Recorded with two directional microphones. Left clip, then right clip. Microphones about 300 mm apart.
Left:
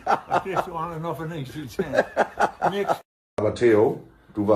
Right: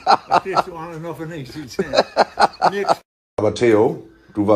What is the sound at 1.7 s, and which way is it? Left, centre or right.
A man's voice, right.